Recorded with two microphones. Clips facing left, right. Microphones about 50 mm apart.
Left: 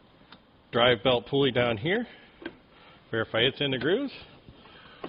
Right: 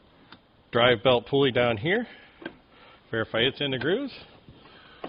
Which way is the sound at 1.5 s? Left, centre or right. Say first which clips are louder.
Right 2 dB; right.